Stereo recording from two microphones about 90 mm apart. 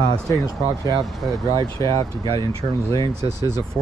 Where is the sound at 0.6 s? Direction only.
45° right (ahead or behind).